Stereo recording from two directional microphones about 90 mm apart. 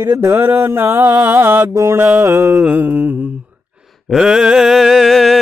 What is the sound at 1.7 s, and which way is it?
Speech, 35° right (ahead or behind).